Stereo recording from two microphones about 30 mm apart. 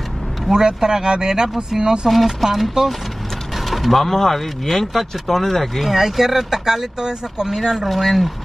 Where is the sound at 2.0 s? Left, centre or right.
Centre.